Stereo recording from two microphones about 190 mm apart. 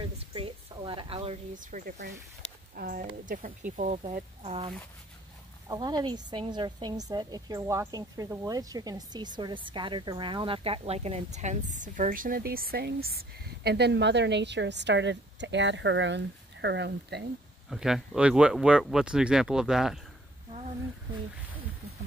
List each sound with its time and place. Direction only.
0.2 s a sound: 25° right (ahead or behind)
1.5 s a woman's voice: 45° right (ahead or behind); by 17.3 s 65° right (ahead or behind)
17.6 s speech: centre (ahead or behind)